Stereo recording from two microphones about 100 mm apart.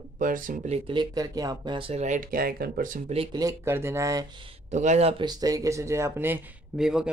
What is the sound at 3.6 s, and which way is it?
Speech, 25° right (ahead or behind).